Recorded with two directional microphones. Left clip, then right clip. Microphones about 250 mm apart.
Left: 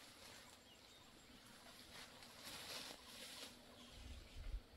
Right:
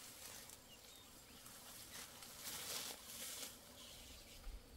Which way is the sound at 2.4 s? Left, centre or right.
Right.